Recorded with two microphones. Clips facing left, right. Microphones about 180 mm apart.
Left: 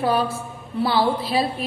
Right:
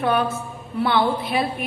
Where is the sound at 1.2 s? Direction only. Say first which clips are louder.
Left 1 dB; 30° left (ahead or behind).